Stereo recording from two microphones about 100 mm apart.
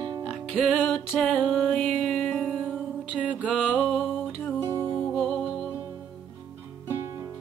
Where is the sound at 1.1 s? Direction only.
Centre (ahead or behind).